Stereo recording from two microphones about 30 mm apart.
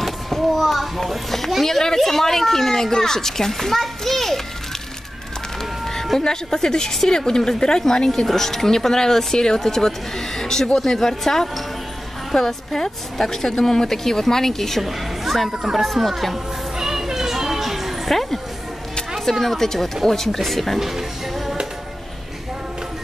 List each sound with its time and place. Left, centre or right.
0.0 s a child's voice: centre
6.1 s a woman's voice: centre
8.1 s a woman's voice: centre
14.8 s a woman's voice: centre
15.5 s speech: centre
15.8 s speech: centre
16.7 s music: centre
19.4 s a woman's voice: centre